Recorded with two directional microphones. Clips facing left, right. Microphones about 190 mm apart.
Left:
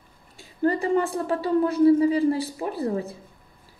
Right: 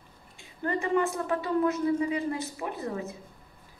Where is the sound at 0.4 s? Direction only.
35° left (ahead or behind).